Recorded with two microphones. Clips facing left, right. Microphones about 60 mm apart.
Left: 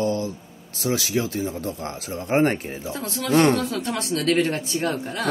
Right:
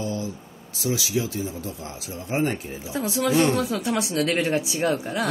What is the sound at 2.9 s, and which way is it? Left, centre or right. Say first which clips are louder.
Speech: right 1 dB; centre.